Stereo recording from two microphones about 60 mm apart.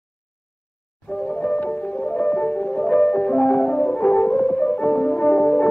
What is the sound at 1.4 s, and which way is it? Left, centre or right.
Music, centre.